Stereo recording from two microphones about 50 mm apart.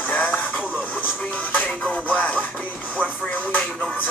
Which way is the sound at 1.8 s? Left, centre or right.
Left.